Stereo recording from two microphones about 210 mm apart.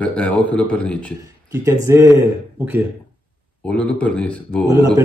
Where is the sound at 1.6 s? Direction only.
15° right (ahead or behind).